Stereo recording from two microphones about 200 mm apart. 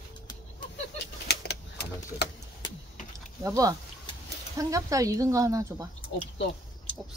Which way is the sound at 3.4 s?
15° right (ahead or behind).